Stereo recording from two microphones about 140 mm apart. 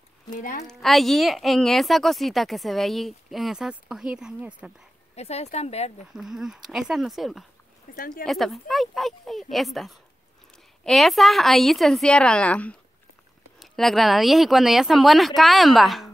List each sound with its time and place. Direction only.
0.3 s a woman's voice: 70° left (ahead or behind)
0.7 s a woman's voice: centre (ahead or behind)
5.1 s speech: 50° left (ahead or behind)
6.1 s a woman's voice: centre (ahead or behind)
7.9 s speech: 90° left
8.3 s a woman's voice: centre (ahead or behind)